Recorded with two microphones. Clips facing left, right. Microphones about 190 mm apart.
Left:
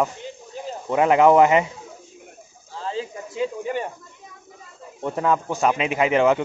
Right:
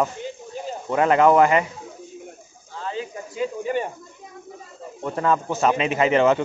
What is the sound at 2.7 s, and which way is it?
Snake, 30° left (ahead or behind).